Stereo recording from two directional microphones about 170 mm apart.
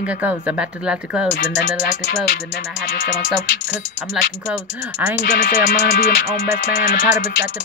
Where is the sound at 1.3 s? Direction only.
70° left (ahead or behind).